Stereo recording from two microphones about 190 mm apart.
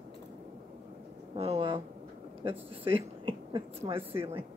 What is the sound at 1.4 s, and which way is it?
A woman's voice, 30° right (ahead or behind).